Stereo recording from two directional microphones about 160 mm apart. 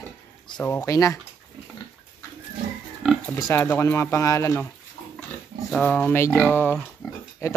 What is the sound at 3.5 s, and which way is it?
Speech, 15° left (ahead or behind).